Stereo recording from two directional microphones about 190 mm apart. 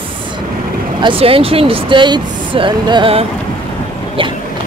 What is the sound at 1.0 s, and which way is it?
Speech, 30° right (ahead or behind).